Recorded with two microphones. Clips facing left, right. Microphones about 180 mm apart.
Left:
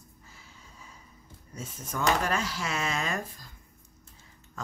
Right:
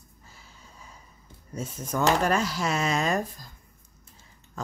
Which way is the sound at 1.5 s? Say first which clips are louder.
Right 6 dB; 40° right (ahead or behind).